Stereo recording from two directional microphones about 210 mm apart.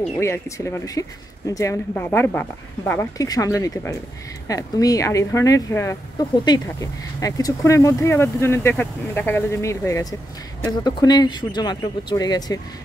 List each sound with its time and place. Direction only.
0.2 s speech: 15° left (ahead or behind)